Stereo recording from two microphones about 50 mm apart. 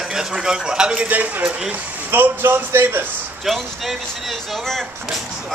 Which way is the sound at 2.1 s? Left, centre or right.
Right.